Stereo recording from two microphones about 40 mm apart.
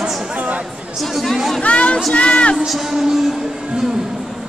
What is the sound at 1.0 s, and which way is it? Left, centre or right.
Speech, centre.